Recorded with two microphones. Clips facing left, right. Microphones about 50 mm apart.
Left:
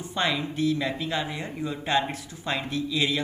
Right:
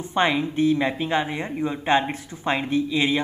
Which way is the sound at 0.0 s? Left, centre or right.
Right.